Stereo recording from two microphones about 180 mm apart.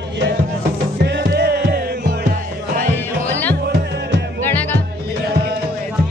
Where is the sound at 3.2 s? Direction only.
10° left (ahead or behind).